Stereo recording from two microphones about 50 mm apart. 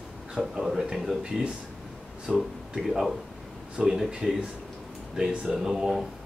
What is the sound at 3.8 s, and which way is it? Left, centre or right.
Speech, centre.